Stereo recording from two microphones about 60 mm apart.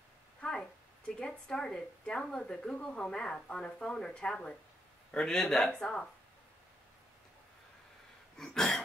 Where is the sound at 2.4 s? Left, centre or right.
Centre.